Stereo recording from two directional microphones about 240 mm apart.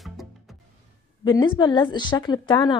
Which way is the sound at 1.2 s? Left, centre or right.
Centre.